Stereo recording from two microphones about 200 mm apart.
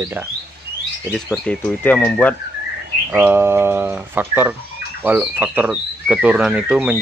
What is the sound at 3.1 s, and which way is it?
Speech, 10° right (ahead or behind).